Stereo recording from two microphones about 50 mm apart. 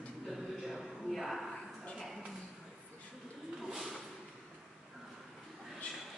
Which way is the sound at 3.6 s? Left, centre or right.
Centre.